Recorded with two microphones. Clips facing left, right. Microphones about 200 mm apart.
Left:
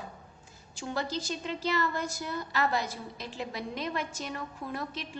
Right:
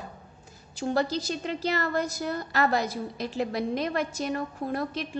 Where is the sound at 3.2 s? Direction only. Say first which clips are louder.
Right 9 dB; 40° right (ahead or behind).